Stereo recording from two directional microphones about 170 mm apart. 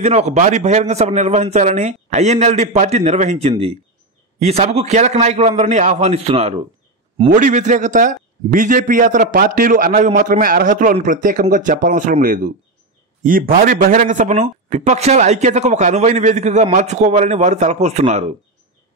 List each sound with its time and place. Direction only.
0.0 s a man's voice: 40° right (ahead or behind)
7.2 s a man's voice: 50° right (ahead or behind)